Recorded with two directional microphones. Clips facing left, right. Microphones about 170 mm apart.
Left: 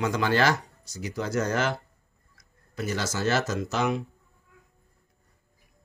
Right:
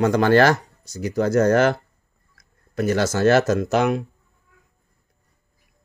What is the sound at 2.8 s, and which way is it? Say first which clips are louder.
Speech: right 10 dB; 55° right (ahead or behind).